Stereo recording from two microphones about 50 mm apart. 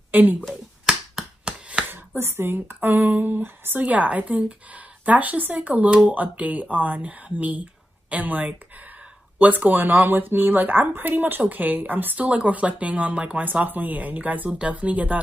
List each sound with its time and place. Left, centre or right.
0.1 s speech: right
1.4 s a sound: centre
1.9 s speech: right
3.8 s speech: right
12.3 s speech: right
13.5 s speech: right